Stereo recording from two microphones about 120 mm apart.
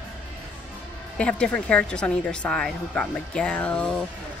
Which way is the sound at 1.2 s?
10° left (ahead or behind).